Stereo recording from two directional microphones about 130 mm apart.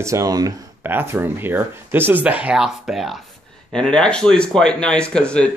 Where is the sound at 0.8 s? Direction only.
15° right (ahead or behind).